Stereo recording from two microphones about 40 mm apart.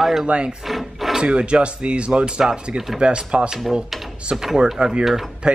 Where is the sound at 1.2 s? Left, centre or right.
Right.